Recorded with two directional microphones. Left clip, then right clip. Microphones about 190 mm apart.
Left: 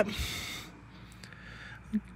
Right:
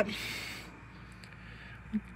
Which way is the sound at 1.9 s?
25° left (ahead or behind).